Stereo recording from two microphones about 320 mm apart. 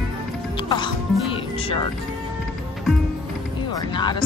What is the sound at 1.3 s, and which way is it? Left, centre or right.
Music, centre.